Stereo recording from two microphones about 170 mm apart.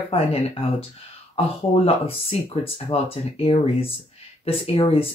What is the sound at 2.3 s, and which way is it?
Speech, 35° left (ahead or behind).